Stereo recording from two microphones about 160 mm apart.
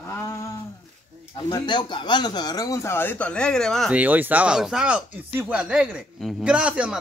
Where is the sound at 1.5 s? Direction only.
30° left (ahead or behind); by 3.9 s 5° left (ahead or behind).